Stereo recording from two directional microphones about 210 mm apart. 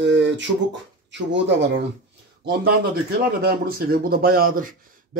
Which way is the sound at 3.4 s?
45° right (ahead or behind).